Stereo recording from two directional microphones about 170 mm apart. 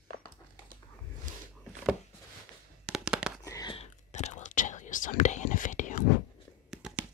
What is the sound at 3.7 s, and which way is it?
Whispering, 40° left (ahead or behind).